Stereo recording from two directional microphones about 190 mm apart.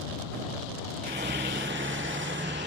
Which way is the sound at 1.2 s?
70° right (ahead or behind).